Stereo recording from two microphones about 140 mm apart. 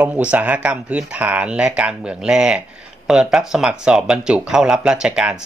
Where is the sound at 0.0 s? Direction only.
10° right (ahead or behind).